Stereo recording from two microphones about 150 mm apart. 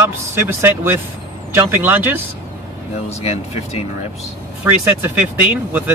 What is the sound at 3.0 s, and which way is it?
Speech, 45° left (ahead or behind).